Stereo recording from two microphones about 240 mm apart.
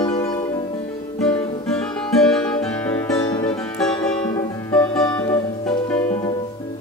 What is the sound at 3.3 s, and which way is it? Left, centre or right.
Music, centre.